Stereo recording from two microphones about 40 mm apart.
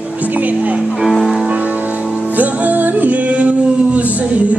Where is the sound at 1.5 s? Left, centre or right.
Right.